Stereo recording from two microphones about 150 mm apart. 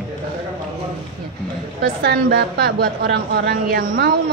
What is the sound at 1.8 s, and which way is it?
A woman's voice, 90° right.